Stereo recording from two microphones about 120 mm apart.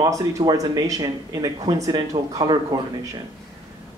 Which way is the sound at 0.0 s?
30° right (ahead or behind).